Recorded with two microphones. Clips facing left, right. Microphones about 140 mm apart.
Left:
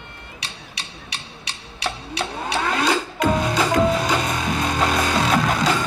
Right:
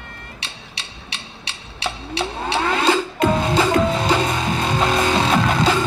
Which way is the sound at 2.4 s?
30° right (ahead or behind).